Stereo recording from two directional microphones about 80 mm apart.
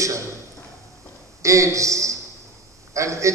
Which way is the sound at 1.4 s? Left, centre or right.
Right.